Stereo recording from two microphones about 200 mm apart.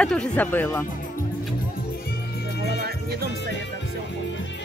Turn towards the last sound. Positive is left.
turn(degrees=-50)  # may be behind; listen again after turning